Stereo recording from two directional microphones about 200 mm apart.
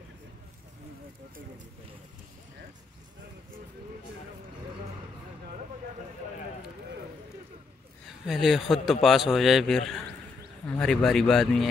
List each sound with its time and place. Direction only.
8.3 s a man's voice: centre (ahead or behind)